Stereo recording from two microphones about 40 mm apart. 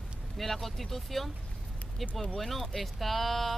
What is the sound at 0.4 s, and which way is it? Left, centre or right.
Speech, centre.